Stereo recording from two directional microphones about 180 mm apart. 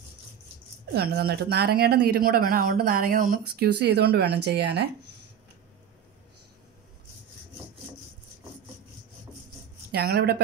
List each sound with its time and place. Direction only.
0.9 s speech: 60° right (ahead or behind)
3.6 s speech: 70° right (ahead or behind)
9.9 s speech: 60° right (ahead or behind)